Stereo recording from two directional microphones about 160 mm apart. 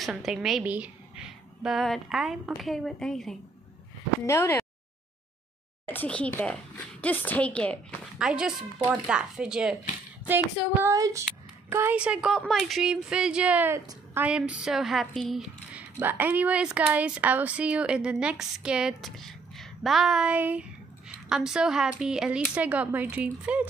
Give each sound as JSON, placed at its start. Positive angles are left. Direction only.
{"t": 0.0, "sound": "a woman's voice", "side_deg": 0}
{"t": 4.3, "sound": "speech", "side_deg": 15}
{"t": 5.9, "sound": "speech", "side_deg": 10}
{"t": 8.2, "sound": "speech", "side_deg": -5}
{"t": 15.7, "sound": "speech", "side_deg": -10}